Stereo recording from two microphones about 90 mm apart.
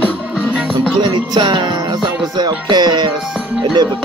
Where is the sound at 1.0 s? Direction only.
55° right (ahead or behind).